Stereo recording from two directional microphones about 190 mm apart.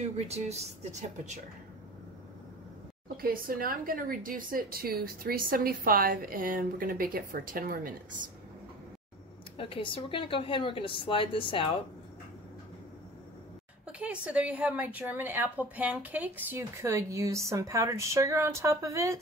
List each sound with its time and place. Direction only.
0.0 s speech: 35° right (ahead or behind)
3.2 s a woman's voice: 50° right (ahead or behind)
9.6 s a woman's voice: 30° left (ahead or behind)
13.9 s a woman's voice: 5° right (ahead or behind)